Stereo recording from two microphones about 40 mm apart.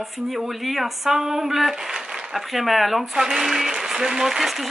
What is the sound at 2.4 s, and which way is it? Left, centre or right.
Speech, centre.